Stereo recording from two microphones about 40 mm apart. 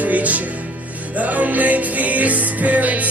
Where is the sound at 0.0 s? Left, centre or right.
Right.